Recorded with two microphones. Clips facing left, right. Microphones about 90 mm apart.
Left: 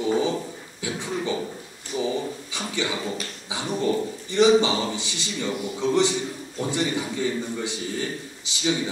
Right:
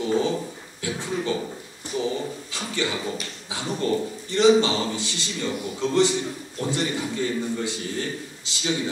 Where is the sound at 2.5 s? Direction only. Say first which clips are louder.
Right 1 dB; 15° left (ahead or behind).